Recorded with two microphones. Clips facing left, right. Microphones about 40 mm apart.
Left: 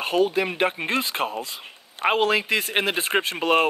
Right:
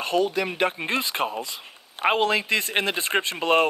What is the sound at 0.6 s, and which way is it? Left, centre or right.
Speech, centre.